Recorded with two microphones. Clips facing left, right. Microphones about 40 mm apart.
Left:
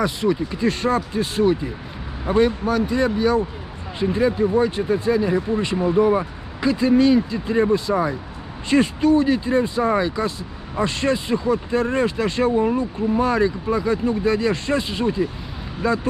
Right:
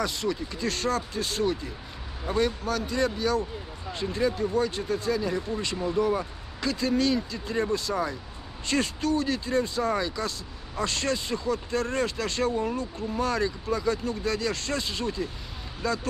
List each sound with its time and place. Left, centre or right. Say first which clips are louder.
0.0 s speech: left 8 dB; centre